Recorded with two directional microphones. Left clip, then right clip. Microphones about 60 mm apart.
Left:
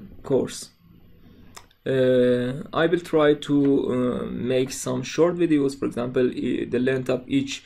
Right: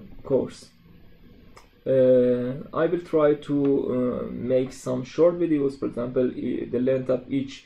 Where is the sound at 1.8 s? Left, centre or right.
Left.